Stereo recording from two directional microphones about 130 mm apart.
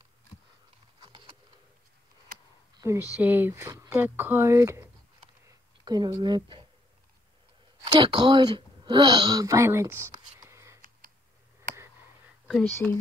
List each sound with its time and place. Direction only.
1.0 s a sound: 40° right (ahead or behind)
3.2 s speech: 15° right (ahead or behind)
3.9 s speech: 15° right (ahead or behind)
5.9 s a woman's voice: 30° right (ahead or behind)
7.8 s a woman's voice: 35° right (ahead or behind); by 10.1 s 20° right (ahead or behind)
10.1 s whispering: 25° right (ahead or behind)
12.8 s speech: centre (ahead or behind)